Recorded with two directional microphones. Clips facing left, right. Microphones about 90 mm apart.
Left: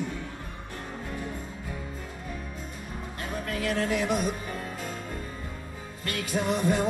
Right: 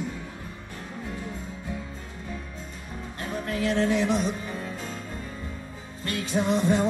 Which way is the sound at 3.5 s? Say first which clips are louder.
Right 4 dB; 30° right (ahead or behind).